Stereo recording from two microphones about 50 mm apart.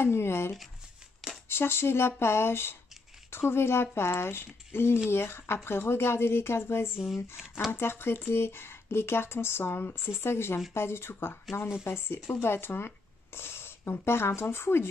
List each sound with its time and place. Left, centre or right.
0.0 s a woman's voice: left